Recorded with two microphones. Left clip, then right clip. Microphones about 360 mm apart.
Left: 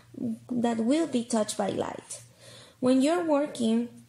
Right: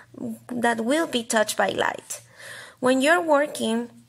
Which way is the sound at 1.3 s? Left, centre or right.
Right.